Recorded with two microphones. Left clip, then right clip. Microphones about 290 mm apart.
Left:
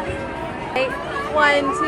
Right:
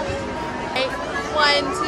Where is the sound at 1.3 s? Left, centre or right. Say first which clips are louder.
Left 2 dB; left.